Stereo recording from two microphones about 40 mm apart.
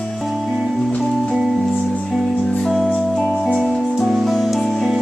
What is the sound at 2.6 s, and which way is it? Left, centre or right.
Music, centre.